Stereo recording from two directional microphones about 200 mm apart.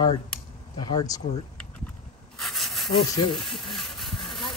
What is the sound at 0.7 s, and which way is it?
Speech, 20° left (ahead or behind).